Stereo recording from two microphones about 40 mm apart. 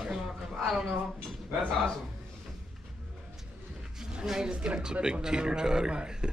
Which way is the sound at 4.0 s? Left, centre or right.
Centre.